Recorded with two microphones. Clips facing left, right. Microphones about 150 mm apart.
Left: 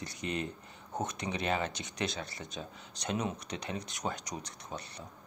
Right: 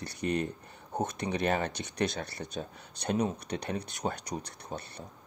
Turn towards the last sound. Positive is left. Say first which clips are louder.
# right 4 dB
turn(degrees=-55)  # may be behind; listen again after turning